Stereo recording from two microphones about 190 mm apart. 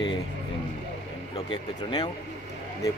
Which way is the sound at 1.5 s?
20° left (ahead or behind).